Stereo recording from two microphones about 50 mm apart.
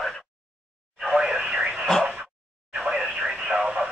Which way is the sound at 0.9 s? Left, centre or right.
Centre.